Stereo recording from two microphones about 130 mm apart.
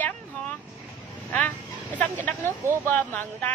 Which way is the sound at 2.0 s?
15° left (ahead or behind).